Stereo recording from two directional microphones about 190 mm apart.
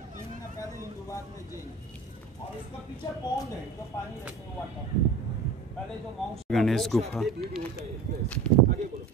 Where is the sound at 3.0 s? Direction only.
20° left (ahead or behind).